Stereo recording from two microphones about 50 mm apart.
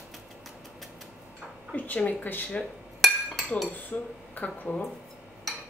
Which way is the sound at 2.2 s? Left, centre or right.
Left.